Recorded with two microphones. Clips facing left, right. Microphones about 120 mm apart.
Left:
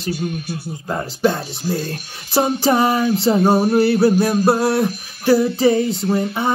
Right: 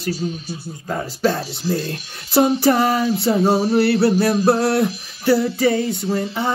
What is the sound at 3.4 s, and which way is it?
Speech, 55° left (ahead or behind).